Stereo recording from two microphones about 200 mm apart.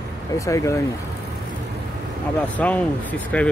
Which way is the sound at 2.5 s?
5° left (ahead or behind).